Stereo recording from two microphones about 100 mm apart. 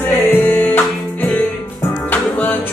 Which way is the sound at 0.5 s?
15° left (ahead or behind).